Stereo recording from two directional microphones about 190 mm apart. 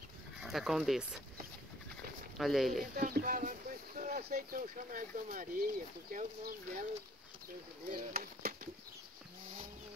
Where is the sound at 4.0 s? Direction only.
50° right (ahead or behind).